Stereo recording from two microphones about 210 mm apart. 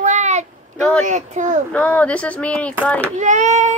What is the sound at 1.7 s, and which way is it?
Speech, 5° left (ahead or behind).